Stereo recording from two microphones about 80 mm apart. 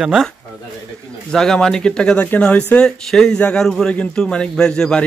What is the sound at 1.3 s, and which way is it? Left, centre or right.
Speech, centre.